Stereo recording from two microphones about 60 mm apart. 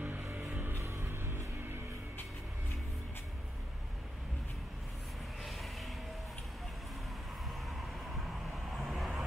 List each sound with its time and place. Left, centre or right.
0.0 s music: right
0.7 s music: right
5.4 s vehicle: centre
8.7 s vehicle: centre